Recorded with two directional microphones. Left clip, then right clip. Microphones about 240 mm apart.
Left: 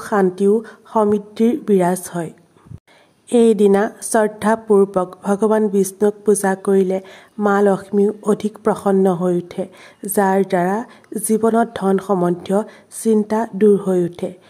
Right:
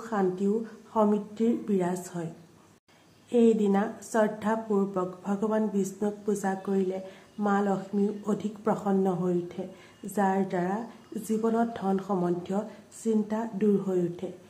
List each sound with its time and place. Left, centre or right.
0.0 s a woman's voice: left
3.3 s a woman's voice: left